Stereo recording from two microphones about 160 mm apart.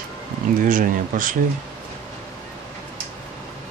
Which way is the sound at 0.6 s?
60° right (ahead or behind).